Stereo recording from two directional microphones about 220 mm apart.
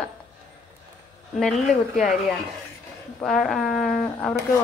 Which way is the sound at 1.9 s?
Centre (ahead or behind).